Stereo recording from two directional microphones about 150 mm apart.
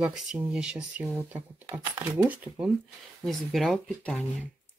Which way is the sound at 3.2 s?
5° left (ahead or behind).